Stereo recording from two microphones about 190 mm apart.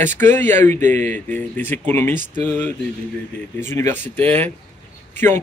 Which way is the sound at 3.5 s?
15° left (ahead or behind).